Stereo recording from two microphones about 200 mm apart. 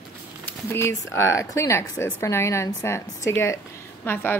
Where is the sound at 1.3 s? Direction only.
15° left (ahead or behind).